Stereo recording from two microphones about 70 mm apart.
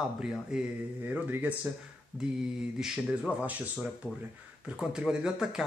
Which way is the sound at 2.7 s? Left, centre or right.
Centre.